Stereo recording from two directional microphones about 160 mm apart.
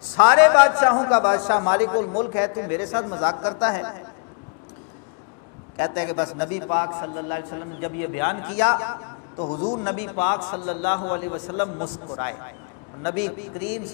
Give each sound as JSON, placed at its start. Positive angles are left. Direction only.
{"t": 0.2, "sound": "a man's voice", "side_deg": 15}
{"t": 5.8, "sound": "a man's voice", "side_deg": 15}
{"t": 9.4, "sound": "a man's voice", "side_deg": 35}
{"t": 9.8, "sound": "a man's voice", "side_deg": 15}
{"t": 10.7, "sound": "a man's voice", "side_deg": 15}
{"t": 13.0, "sound": "a man's voice", "side_deg": 15}